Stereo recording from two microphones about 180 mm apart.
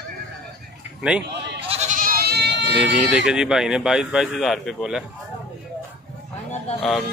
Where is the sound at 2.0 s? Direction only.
55° right (ahead or behind); by 2.9 s 70° right (ahead or behind).